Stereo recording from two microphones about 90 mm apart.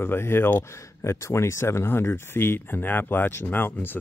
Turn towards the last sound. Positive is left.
turn(degrees=25)  # may be behind; listen again after turning